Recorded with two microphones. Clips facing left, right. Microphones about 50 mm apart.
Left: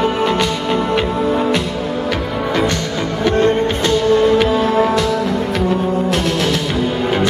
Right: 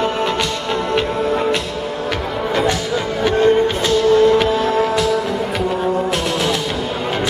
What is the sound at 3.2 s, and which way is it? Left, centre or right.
Music, centre.